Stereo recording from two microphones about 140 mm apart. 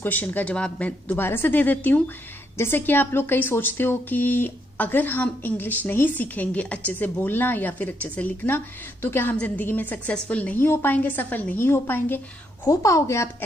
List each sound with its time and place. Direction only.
0.0 s a woman's voice: 15° left (ahead or behind)